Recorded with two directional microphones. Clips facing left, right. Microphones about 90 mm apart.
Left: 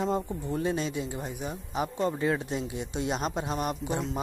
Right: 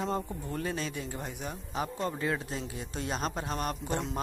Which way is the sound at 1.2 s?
5° left (ahead or behind).